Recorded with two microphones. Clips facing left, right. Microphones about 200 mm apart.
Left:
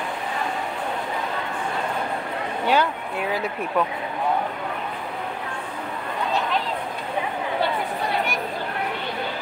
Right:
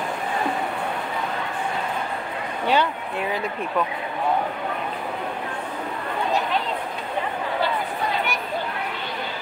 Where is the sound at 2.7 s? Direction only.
Centre (ahead or behind).